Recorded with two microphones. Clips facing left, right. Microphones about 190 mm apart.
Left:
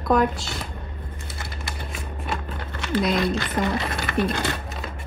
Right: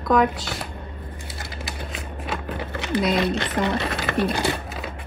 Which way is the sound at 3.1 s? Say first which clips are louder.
Right 1 dB; 65° right (ahead or behind).